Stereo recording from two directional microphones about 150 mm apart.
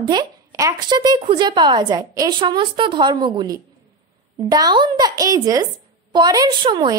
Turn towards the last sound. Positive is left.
turn(degrees=-30)  # may be behind; listen again after turning